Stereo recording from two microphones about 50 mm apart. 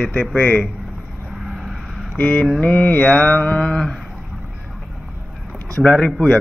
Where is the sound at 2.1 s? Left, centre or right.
Left.